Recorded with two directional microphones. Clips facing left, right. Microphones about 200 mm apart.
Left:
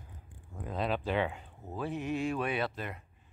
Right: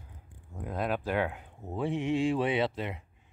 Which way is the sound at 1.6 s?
25° right (ahead or behind).